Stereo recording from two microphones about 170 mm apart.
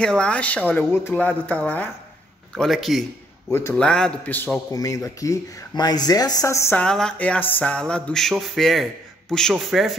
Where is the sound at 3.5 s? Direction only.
15° left (ahead or behind).